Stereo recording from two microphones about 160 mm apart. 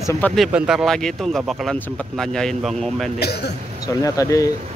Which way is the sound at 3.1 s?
90° left.